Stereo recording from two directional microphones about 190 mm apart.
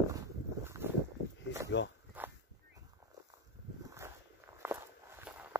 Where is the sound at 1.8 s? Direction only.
70° left (ahead or behind).